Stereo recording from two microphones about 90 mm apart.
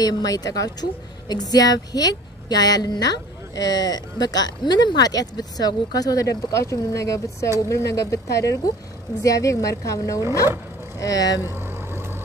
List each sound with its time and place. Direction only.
0.0 s a woman's voice: 45° left (ahead or behind)